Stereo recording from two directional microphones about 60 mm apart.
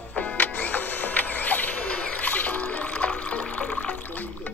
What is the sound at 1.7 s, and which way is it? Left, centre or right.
Water, centre.